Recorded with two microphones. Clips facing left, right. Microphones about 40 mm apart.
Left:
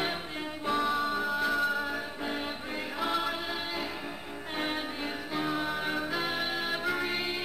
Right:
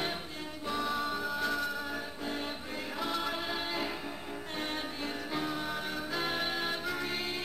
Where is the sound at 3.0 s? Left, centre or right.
Centre.